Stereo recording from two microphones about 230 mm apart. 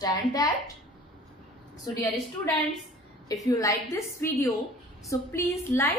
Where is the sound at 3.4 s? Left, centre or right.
Centre.